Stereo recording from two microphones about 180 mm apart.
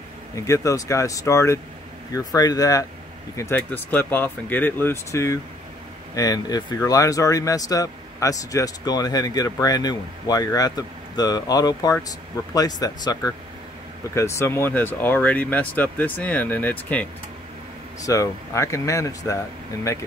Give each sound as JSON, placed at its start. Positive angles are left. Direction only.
{"t": 0.4, "sound": "speech", "side_deg": 15}